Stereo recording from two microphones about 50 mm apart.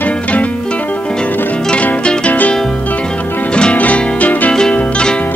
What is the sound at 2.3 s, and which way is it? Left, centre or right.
Music, left.